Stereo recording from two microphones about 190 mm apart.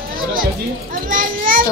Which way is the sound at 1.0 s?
45° right (ahead or behind).